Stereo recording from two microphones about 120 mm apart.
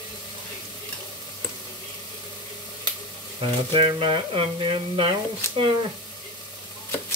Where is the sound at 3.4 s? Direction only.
45° right (ahead or behind).